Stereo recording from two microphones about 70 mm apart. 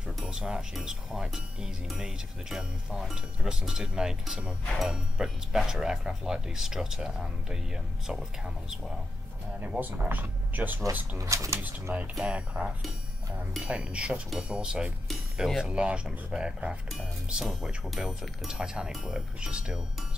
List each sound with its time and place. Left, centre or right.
0.2 s speech: centre
9.6 s speech: right
11.1 s speech: right
11.9 s speech: centre